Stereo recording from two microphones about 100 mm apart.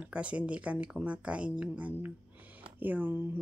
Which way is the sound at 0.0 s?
15° right (ahead or behind).